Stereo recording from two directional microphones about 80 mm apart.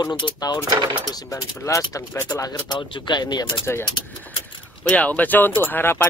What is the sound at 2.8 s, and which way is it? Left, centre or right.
Speech, left.